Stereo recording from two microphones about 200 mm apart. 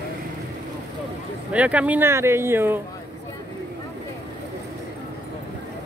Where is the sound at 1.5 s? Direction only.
5° right (ahead or behind).